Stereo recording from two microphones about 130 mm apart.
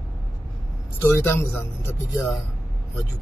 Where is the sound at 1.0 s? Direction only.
20° left (ahead or behind).